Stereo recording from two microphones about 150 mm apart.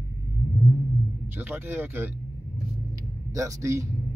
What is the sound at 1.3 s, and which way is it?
Speech, 15° right (ahead or behind).